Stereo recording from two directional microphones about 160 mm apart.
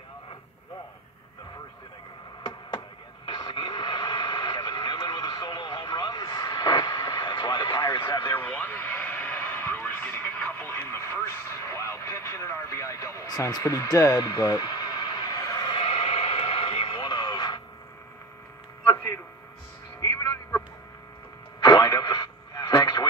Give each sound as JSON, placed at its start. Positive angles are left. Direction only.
{"t": 3.3, "sound": "radio", "side_deg": 30}
{"t": 8.2, "sound": "radio", "side_deg": 10}
{"t": 20.0, "sound": "music", "side_deg": 20}
{"t": 21.6, "sound": "radio", "side_deg": 20}